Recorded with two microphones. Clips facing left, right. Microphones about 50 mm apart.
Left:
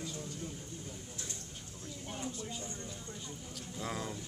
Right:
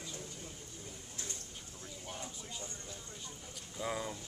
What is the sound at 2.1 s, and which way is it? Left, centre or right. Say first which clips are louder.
Speech: left 5 dB; centre.